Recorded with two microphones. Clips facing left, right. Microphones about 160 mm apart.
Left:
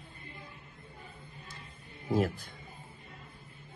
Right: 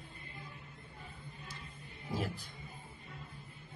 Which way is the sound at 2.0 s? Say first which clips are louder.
Left 9 dB; 55° left (ahead or behind).